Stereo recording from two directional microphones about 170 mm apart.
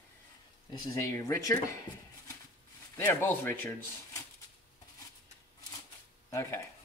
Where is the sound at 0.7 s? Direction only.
20° left (ahead or behind).